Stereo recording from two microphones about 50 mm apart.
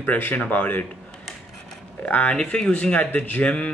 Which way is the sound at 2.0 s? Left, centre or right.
Left.